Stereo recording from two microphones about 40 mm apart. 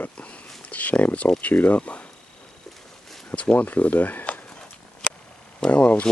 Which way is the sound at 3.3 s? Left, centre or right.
Left.